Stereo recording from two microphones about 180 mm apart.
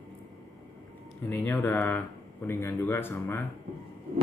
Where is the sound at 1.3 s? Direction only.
10° left (ahead or behind).